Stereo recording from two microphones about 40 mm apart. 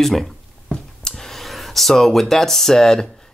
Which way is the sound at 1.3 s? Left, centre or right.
Centre.